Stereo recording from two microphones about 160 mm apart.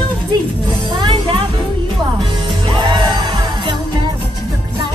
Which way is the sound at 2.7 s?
30° right (ahead or behind).